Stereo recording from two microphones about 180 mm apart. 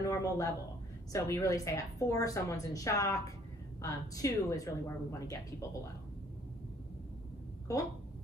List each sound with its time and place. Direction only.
0.0 s a woman's voice: 15° left (ahead or behind)